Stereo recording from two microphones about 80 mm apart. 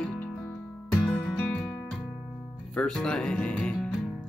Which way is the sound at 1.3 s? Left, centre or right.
Centre.